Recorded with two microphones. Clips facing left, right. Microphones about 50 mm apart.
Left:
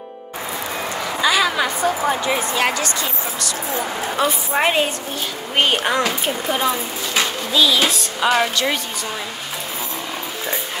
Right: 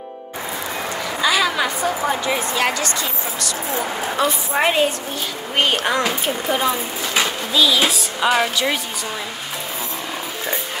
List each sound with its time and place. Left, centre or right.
1.2 s a woman's voice: centre
3.7 s speech: centre
4.2 s a woman's voice: centre